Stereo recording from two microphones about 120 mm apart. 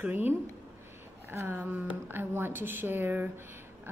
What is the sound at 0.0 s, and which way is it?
A woman's voice, 15° right (ahead or behind).